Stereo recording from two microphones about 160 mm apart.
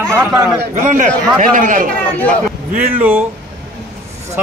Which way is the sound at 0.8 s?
50° right (ahead or behind).